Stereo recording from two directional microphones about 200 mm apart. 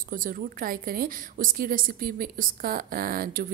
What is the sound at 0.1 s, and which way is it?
Speech, 45° right (ahead or behind).